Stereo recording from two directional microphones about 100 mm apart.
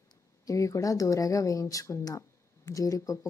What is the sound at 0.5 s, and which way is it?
Speech, 35° left (ahead or behind).